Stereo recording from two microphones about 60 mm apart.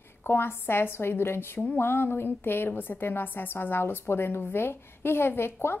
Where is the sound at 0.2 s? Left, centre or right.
Left.